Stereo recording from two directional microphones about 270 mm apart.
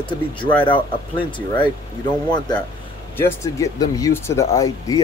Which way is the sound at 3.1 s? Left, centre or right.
Centre.